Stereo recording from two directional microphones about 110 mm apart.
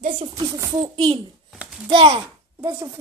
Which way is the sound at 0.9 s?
55° right (ahead or behind).